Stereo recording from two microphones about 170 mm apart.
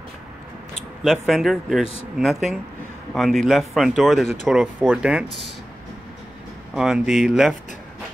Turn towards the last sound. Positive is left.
turn(degrees=0)  # may be behind; listen again after turning